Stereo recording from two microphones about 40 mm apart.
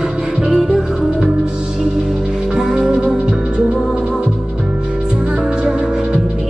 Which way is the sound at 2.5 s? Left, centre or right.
Right.